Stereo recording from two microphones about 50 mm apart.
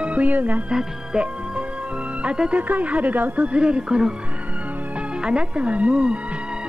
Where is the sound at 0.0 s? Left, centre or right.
Right.